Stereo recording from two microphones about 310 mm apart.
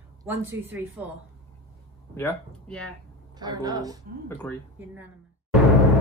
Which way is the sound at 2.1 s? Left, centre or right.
Centre.